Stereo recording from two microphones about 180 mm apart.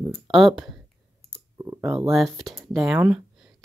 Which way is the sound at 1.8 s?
15° right (ahead or behind).